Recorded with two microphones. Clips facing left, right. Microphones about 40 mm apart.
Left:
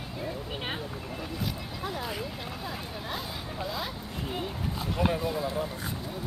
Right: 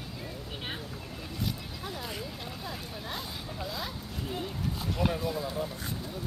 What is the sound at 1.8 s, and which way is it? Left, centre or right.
Vehicle, centre.